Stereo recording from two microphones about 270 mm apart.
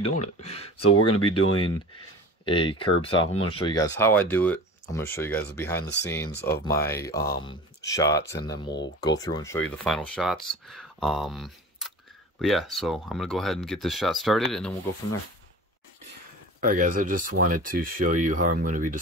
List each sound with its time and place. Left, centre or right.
0.0 s speech: left
0.9 s speech: left
2.4 s speech: centre
16.6 s speech: right